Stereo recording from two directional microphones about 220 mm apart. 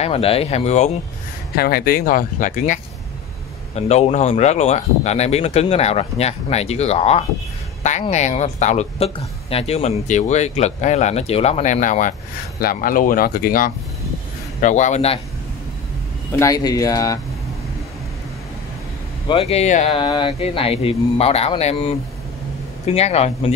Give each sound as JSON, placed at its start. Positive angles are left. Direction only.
{"t": 0.0, "sound": "speech", "side_deg": 25}
{"t": 1.5, "sound": "speech", "side_deg": 45}
{"t": 16.3, "sound": "speech", "side_deg": 15}
{"t": 19.2, "sound": "speech", "side_deg": 25}
{"t": 22.9, "sound": "speech", "side_deg": 30}